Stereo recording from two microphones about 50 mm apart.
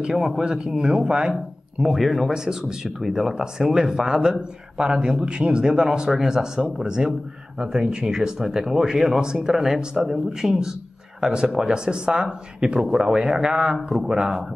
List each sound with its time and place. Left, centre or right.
0.1 s speech: centre
2.0 s speech: centre